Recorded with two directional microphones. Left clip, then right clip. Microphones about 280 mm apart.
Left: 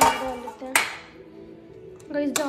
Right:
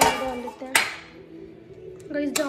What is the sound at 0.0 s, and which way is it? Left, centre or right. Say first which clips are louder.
Music: left 1 dB; centre.